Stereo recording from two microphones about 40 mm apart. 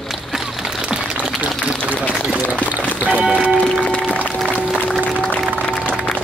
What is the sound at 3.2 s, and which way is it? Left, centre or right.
Music, right.